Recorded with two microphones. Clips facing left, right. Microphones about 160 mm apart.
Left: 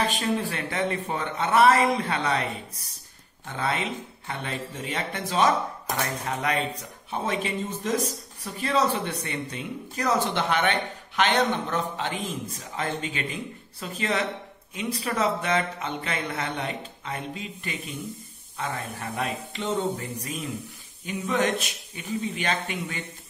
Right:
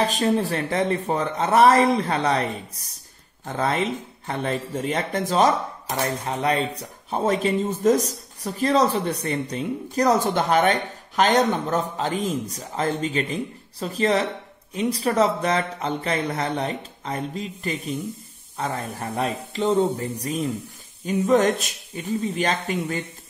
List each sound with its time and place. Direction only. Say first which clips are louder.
0.0 s speech: right 5 dB; 35° right (ahead or behind)
3.4 s speech: right 5 dB; 40° right (ahead or behind)
6.0 s speech: right 7 dB; 30° right (ahead or behind)